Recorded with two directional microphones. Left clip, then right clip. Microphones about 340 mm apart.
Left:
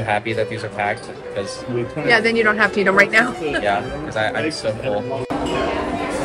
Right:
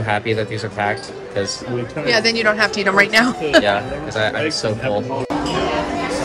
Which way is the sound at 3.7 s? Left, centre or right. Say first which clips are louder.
Right 2 dB; right.